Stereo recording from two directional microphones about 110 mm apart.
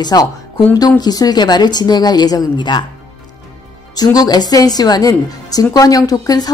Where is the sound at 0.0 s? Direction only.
35° left (ahead or behind).